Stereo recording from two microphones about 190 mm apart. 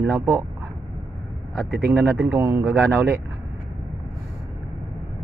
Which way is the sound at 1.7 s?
60° right (ahead or behind).